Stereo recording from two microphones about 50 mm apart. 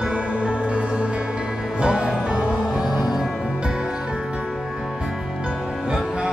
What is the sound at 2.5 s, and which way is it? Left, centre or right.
Music, centre.